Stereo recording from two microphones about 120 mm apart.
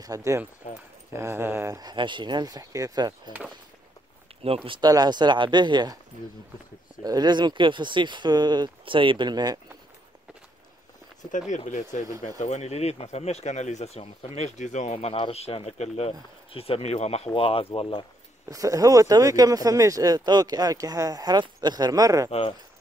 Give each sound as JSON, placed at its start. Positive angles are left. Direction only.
{"t": 0.0, "sound": "speech", "side_deg": -25}
{"t": 0.6, "sound": "speech", "side_deg": 75}
{"t": 1.1, "sound": "speech", "side_deg": -20}
{"t": 1.8, "sound": "speech", "side_deg": -40}
{"t": 4.3, "sound": "a sound", "side_deg": -55}
{"t": 4.6, "sound": "speech", "side_deg": -35}
{"t": 7.0, "sound": "speech", "side_deg": -35}
{"t": 11.3, "sound": "speech", "side_deg": 90}
{"t": 12.4, "sound": "speech", "side_deg": 70}
{"t": 15.1, "sound": "speech", "side_deg": 55}
{"t": 16.1, "sound": "speech", "side_deg": 55}
{"t": 17.3, "sound": "speech", "side_deg": 50}
{"t": 18.5, "sound": "speech", "side_deg": -30}
{"t": 22.3, "sound": "speech", "side_deg": 55}